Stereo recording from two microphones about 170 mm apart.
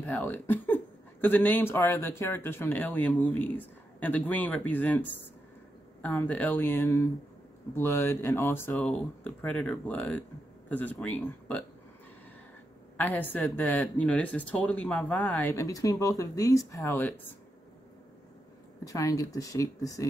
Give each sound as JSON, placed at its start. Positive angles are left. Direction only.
{"t": 0.0, "sound": "speech", "side_deg": 15}
{"t": 6.0, "sound": "speech", "side_deg": 10}
{"t": 8.7, "sound": "speech", "side_deg": 0}
{"t": 12.9, "sound": "speech", "side_deg": 10}
{"t": 18.9, "sound": "speech", "side_deg": 20}